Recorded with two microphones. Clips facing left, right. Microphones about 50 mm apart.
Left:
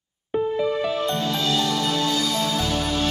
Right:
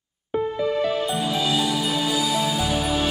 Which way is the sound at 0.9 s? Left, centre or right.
Centre.